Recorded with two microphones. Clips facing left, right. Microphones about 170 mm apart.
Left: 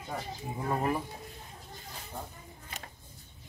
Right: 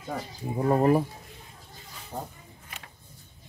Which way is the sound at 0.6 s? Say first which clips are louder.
Right 10 dB; 40° right (ahead or behind).